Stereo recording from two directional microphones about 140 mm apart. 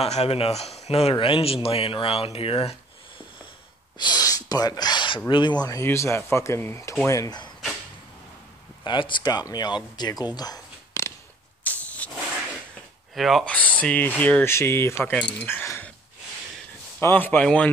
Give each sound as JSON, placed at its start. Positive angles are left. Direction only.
{"t": 0.0, "sound": "speech", "side_deg": 45}
{"t": 4.0, "sound": "speech", "side_deg": 25}
{"t": 8.8, "sound": "speech", "side_deg": 35}
{"t": 11.6, "sound": "vehicle", "side_deg": 10}
{"t": 13.1, "sound": "speech", "side_deg": 0}
{"t": 13.6, "sound": "speech", "side_deg": 10}
{"t": 17.0, "sound": "speech", "side_deg": 15}